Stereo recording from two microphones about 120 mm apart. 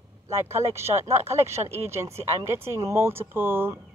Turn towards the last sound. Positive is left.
turn(degrees=-20)  # may be behind; listen again after turning